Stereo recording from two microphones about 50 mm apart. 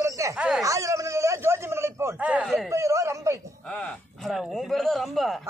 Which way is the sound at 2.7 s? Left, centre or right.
Right.